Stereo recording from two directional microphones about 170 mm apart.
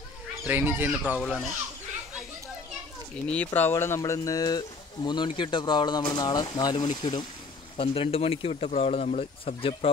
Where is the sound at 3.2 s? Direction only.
10° left (ahead or behind).